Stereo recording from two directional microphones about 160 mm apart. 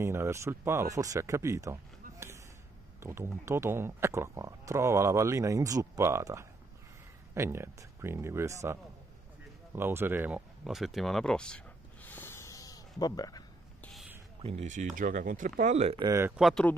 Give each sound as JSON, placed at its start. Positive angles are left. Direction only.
{"t": 0.0, "sound": "speech", "side_deg": -15}
{"t": 9.8, "sound": "speech", "side_deg": -15}
{"t": 10.6, "sound": "a sound", "side_deg": 0}
{"t": 13.0, "sound": "speech", "side_deg": 25}
{"t": 13.7, "sound": "a sound", "side_deg": 5}
{"t": 14.4, "sound": "speech", "side_deg": -40}
{"t": 16.0, "sound": "speech", "side_deg": -20}
{"t": 16.3, "sound": "speech", "side_deg": 0}